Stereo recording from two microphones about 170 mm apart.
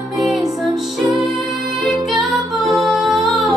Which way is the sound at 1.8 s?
Centre (ahead or behind).